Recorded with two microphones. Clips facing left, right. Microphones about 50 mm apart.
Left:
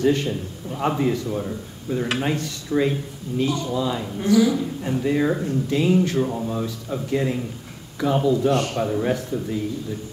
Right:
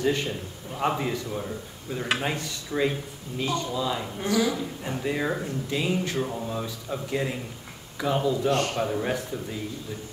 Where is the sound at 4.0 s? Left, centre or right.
Centre.